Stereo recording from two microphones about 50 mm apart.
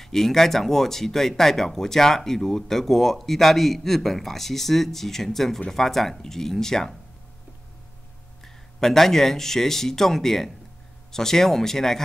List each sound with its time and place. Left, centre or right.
0.0 s speech: centre
8.7 s speech: centre